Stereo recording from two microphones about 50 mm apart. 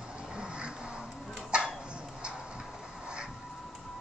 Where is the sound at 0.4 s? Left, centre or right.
Centre.